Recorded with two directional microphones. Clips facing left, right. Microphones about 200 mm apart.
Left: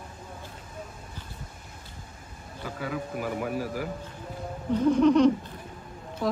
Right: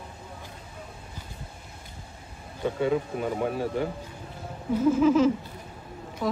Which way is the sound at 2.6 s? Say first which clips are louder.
Right 8 dB; 25° right (ahead or behind).